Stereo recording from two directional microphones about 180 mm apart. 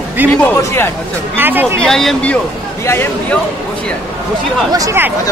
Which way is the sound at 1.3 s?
10° right (ahead or behind).